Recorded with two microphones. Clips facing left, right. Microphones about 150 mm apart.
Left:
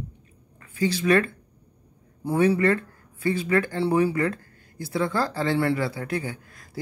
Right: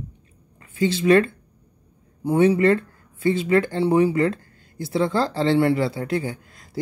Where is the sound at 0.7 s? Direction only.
25° right (ahead or behind).